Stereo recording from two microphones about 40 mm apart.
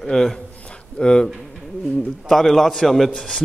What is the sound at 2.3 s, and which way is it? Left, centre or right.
A man's voice, centre.